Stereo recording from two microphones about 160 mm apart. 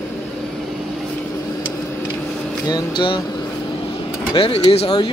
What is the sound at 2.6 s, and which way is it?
Speech, 30° left (ahead or behind).